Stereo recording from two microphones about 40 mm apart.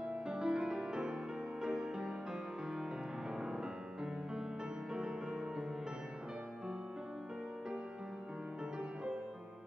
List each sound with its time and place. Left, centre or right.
0.3 s music: centre